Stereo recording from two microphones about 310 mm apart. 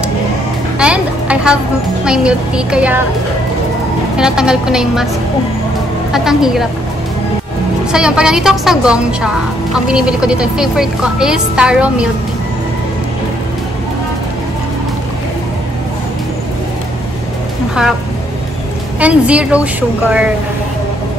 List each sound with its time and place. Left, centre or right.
0.7 s music: centre
2.0 s a woman's voice: centre
4.2 s a woman's voice: centre
6.1 s a woman's voice: centre
7.9 s a woman's voice: centre
18.9 s a woman's voice: centre